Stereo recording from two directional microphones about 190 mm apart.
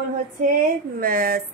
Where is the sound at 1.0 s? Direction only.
50° right (ahead or behind).